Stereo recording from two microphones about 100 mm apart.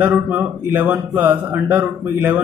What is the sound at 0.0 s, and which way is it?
A man's voice, 20° right (ahead or behind).